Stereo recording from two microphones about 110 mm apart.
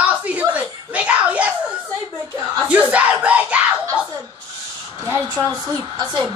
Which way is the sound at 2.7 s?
10° right (ahead or behind).